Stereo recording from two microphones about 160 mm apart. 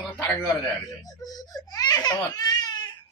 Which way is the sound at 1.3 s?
25° left (ahead or behind).